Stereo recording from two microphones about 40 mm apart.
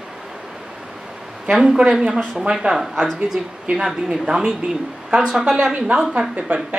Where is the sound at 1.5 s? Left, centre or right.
Right.